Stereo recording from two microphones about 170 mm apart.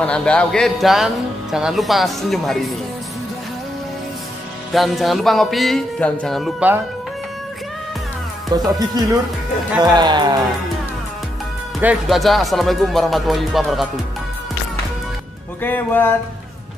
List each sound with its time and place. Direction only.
0.0 s speech: 5° left (ahead or behind)
4.7 s speech: centre (ahead or behind)
8.7 s speech: 20° right (ahead or behind)
11.8 s speech: 5° right (ahead or behind)
15.6 s speech: 10° left (ahead or behind)